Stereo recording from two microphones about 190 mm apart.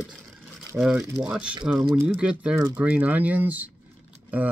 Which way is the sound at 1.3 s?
5° right (ahead or behind).